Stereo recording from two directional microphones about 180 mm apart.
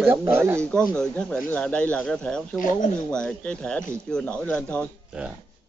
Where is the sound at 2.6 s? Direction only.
45° left (ahead or behind).